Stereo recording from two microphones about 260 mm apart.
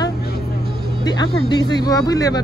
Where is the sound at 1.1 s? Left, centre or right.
Centre.